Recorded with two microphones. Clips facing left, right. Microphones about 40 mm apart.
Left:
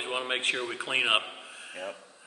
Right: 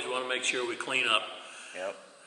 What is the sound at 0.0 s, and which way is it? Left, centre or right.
A man's voice, centre.